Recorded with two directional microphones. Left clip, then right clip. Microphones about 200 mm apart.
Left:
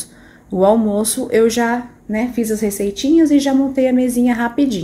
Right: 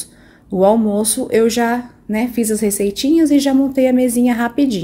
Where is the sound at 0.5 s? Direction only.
15° right (ahead or behind).